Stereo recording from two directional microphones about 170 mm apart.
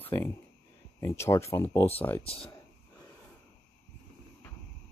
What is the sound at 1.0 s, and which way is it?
Speech, 15° left (ahead or behind).